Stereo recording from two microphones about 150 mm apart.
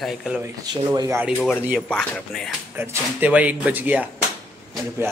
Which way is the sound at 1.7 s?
5° left (ahead or behind).